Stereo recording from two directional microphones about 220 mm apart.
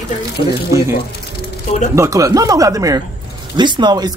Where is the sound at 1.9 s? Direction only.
15° right (ahead or behind).